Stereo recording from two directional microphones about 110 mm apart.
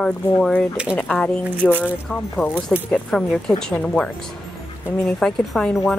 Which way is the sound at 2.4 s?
20° left (ahead or behind).